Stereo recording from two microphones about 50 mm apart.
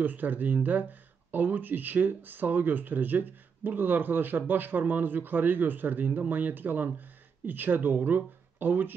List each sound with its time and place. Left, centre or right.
0.0 s speech: right